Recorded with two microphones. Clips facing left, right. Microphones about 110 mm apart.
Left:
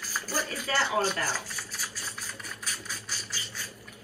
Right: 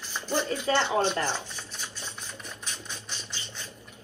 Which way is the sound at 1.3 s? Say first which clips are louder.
Right 1 dB; 25° right (ahead or behind).